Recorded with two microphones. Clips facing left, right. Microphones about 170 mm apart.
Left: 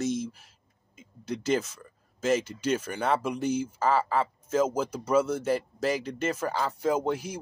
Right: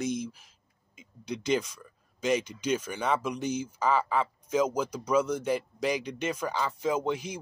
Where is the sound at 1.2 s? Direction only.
5° left (ahead or behind).